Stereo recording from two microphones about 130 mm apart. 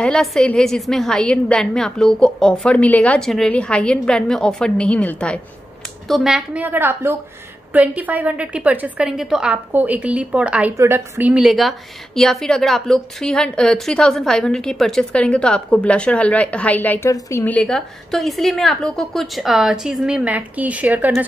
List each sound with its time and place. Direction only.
0.0 s a woman's voice: 5° left (ahead or behind); by 11.4 s 15° right (ahead or behind)
11.4 s a woman's voice: centre (ahead or behind); by 17.6 s 20° left (ahead or behind)
17.6 s a woman's voice: 5° left (ahead or behind); by 21.1 s 10° right (ahead or behind)